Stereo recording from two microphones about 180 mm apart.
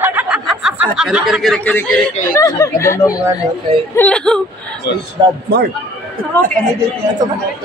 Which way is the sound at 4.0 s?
5° left (ahead or behind).